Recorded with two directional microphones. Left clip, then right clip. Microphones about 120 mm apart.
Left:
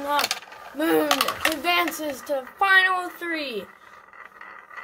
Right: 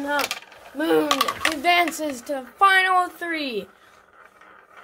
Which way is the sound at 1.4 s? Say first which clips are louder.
Right 4 dB; 30° right (ahead or behind).